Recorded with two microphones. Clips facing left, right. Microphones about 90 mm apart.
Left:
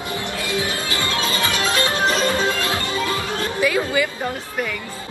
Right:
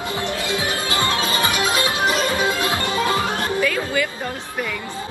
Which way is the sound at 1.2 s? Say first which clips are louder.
Right 1 dB; 20° right (ahead or behind).